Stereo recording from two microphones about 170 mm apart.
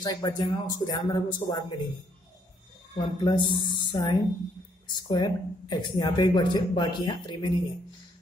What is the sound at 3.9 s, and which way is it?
Speech, 25° left (ahead or behind).